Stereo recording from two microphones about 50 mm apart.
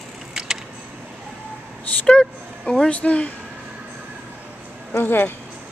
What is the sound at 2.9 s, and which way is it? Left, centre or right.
Speech, left.